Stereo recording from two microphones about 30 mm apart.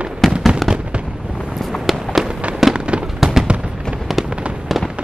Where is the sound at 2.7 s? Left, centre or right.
Right.